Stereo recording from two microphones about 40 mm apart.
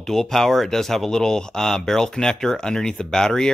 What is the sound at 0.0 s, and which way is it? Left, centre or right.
Speech, centre.